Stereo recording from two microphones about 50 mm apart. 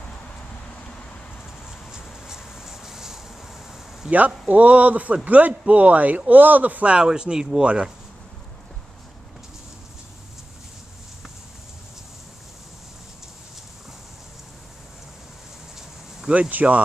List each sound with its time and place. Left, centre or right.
1.7 s a sound: centre
4.1 s speech: right
16.3 s speech: right